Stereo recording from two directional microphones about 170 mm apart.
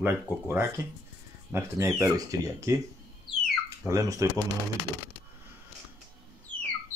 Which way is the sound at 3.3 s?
Centre (ahead or behind).